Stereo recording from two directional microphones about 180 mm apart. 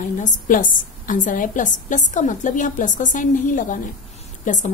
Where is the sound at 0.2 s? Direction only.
45° left (ahead or behind).